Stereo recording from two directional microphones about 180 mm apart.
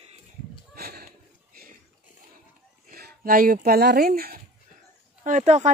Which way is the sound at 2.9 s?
50° right (ahead or behind).